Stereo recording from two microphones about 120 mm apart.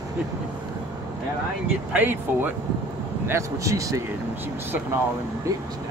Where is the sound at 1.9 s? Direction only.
15° right (ahead or behind).